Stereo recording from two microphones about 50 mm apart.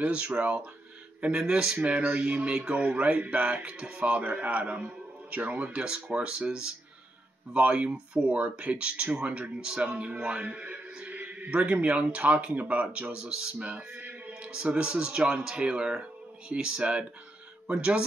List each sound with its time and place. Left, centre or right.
0.0 s speech: right
1.8 s a man's voice: right
13.1 s a man's voice: centre